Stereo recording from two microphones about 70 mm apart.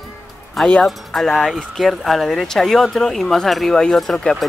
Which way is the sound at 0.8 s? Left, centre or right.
Centre.